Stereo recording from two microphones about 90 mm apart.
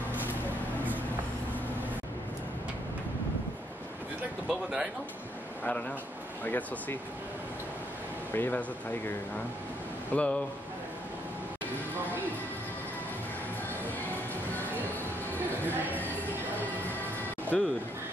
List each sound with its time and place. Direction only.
4.5 s speech: 5° right (ahead or behind)
5.6 s a man's voice: 15° left (ahead or behind)
8.3 s speech: 20° left (ahead or behind)
10.1 s a man's voice: 15° left (ahead or behind)
17.5 s speech: 5° left (ahead or behind)